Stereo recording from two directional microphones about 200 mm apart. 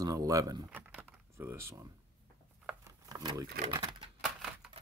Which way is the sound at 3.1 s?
20° right (ahead or behind).